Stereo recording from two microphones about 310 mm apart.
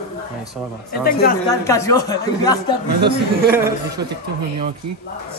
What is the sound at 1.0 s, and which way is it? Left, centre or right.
Speech, left.